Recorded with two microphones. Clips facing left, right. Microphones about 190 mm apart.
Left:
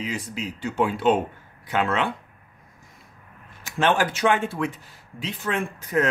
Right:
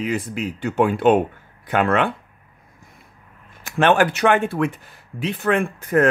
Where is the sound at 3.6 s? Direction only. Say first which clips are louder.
Right 5 dB; 60° right (ahead or behind).